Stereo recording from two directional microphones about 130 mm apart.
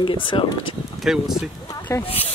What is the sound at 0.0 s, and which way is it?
Speech, 40° left (ahead or behind).